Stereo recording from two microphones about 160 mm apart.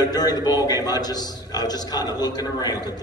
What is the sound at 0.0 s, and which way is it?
A man's voice, 25° left (ahead or behind).